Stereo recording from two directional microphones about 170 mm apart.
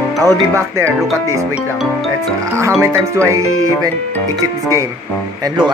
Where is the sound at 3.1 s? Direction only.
15° right (ahead or behind).